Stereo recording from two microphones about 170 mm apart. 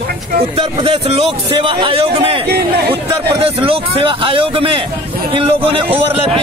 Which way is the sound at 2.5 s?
75° right (ahead or behind).